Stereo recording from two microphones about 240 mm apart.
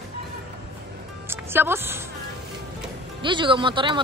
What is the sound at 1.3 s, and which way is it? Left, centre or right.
Speech, centre.